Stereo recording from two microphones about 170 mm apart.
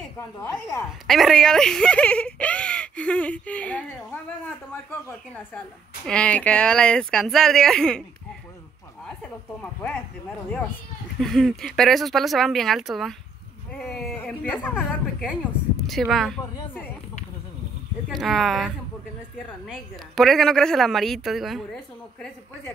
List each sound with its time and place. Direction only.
0.2 s speech: 20° left (ahead or behind)
1.0 s speech: centre (ahead or behind)
6.0 s speech: 5° left (ahead or behind)
9.6 s speech: 5° left (ahead or behind)
11.1 s speech: centre (ahead or behind)
14.1 s speech: 10° left (ahead or behind)
18.1 s speech: centre (ahead or behind)
19.7 s speech: centre (ahead or behind)